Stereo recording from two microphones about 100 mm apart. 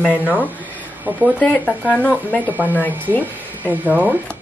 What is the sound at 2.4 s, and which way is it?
Speech, 15° right (ahead or behind).